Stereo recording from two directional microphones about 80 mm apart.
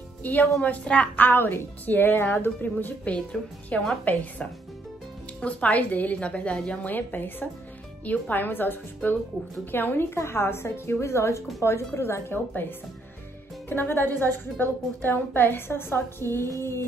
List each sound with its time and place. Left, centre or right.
0.2 s a woman's voice: left
6.9 s a woman's voice: left